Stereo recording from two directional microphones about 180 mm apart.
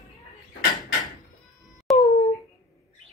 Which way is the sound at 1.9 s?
Centre (ahead or behind).